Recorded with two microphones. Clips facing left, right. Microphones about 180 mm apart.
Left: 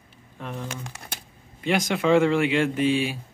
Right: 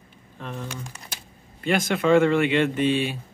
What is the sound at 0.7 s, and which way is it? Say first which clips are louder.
Speech: left 1 dB; 55° left (ahead or behind).